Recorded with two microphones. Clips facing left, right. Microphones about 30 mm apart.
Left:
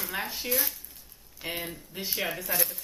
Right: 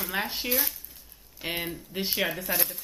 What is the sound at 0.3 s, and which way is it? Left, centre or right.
Speech, right.